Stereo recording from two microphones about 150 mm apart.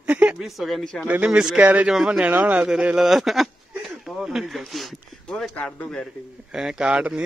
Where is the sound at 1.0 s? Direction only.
10° right (ahead or behind).